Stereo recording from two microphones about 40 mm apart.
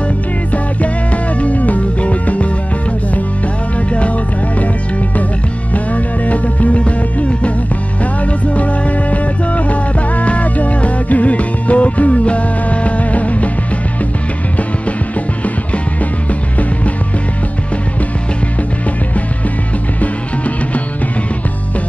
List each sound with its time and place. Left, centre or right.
0.5 s music: left
3.7 s music: left
5.9 s music: left
15.4 s music: left
20.0 s music: left